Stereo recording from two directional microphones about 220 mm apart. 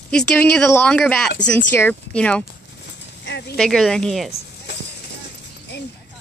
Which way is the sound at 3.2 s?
50° left (ahead or behind).